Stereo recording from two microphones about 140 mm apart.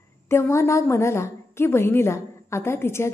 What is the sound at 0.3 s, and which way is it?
A woman's voice, 20° left (ahead or behind).